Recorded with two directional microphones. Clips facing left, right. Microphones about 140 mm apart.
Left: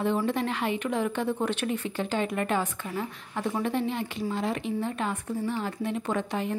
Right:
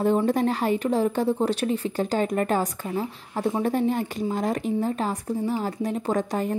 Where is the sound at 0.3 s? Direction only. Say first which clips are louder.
Right 6 dB; 40° right (ahead or behind).